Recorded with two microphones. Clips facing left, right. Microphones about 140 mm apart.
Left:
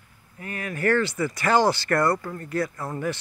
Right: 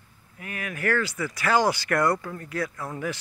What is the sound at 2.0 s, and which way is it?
Speech, 5° left (ahead or behind).